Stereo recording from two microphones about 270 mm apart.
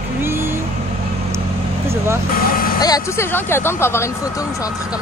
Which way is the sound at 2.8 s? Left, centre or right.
Centre.